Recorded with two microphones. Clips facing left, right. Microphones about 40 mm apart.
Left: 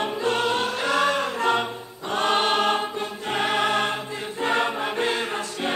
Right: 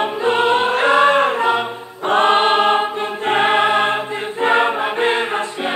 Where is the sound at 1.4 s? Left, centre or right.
Centre.